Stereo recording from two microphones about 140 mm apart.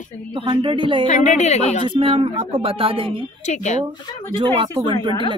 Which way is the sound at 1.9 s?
45° right (ahead or behind).